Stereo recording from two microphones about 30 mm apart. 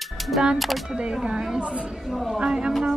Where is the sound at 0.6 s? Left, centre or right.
Centre.